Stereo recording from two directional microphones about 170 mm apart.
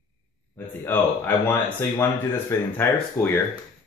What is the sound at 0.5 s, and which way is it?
Speech, 10° left (ahead or behind).